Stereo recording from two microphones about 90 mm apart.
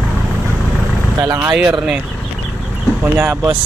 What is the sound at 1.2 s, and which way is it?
Speech, 40° right (ahead or behind).